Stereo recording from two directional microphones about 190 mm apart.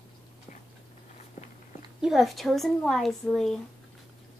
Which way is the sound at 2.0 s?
Centre (ahead or behind).